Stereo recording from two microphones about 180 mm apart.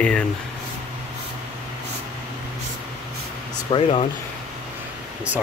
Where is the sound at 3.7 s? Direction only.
35° left (ahead or behind).